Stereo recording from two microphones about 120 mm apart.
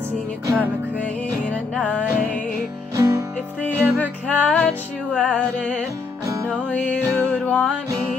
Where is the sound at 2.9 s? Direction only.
30° right (ahead or behind).